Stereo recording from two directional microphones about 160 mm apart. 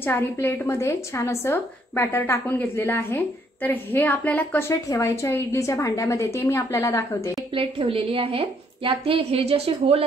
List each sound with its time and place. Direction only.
0.0 s a woman's voice: 15° left (ahead or behind)
7.5 s a woman's voice: 35° right (ahead or behind)